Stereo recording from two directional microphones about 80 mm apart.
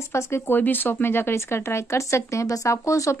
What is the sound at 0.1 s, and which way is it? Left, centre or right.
Speech, left.